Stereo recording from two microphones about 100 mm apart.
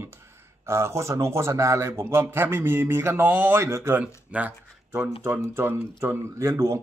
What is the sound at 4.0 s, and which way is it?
Speech, 15° right (ahead or behind).